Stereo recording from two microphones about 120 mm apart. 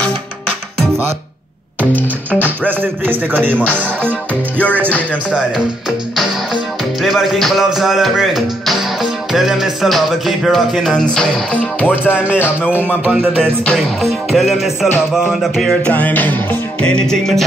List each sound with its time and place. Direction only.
2.3 s speech: 15° right (ahead or behind)
4.3 s music: 10° left (ahead or behind)
5.3 s speech: 5° right (ahead or behind)
11.8 s music: 15° left (ahead or behind)
12.1 s speech: 10° right (ahead or behind)
12.4 s music: 15° left (ahead or behind)
13.2 s music: 5° left (ahead or behind)
15.6 s music: 10° left (ahead or behind)